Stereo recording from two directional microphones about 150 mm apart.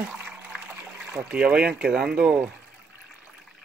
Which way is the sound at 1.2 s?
5° right (ahead or behind).